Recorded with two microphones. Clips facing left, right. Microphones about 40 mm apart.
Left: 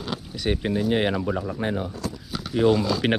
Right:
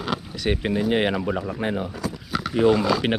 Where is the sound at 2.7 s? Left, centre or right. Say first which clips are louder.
Right 2 dB; right.